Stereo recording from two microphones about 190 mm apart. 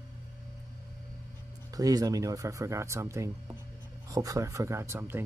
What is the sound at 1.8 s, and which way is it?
Speech, 20° right (ahead or behind).